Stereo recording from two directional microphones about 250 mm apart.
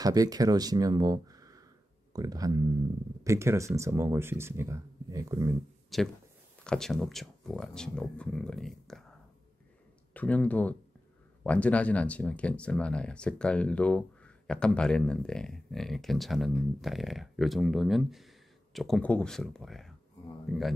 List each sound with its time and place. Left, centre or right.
0.0 s speech: centre
5.9 s speech: centre
10.1 s a man's voice: centre